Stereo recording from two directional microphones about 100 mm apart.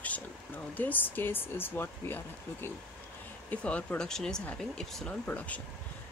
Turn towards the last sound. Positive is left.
turn(degrees=15)  # may be behind; listen again after turning